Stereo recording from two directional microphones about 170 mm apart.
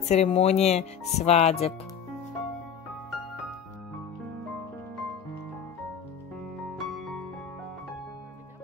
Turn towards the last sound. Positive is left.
turn(degrees=0)  # may be behind; listen again after turning